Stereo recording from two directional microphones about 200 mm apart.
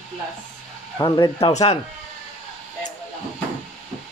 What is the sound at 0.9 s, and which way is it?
Speech, 20° left (ahead or behind).